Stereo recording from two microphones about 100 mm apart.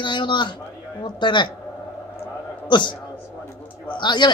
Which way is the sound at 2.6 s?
50° left (ahead or behind).